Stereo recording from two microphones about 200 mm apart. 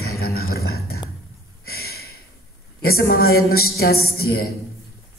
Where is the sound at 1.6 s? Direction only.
50° left (ahead or behind).